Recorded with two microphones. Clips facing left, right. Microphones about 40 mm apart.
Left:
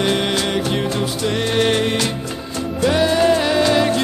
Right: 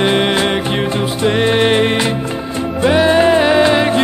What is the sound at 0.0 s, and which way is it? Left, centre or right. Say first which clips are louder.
Music: right 5 dB; right.